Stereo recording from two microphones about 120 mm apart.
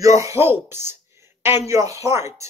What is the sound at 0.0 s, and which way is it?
Speech, 25° right (ahead or behind).